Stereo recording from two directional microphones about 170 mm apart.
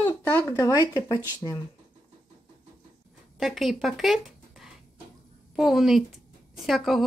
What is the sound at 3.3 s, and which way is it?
Speech, centre (ahead or behind).